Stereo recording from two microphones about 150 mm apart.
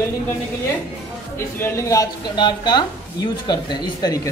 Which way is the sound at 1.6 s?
20° left (ahead or behind).